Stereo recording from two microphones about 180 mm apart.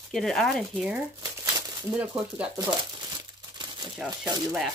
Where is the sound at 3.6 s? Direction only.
25° right (ahead or behind).